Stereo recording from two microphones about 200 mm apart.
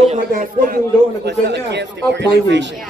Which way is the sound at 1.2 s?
60° right (ahead or behind).